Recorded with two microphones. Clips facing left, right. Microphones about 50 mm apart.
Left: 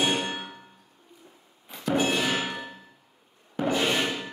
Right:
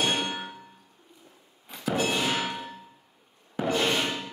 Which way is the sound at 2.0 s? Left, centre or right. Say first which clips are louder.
Left 2 dB; centre.